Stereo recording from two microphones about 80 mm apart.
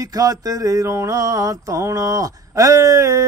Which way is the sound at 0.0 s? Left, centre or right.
Right.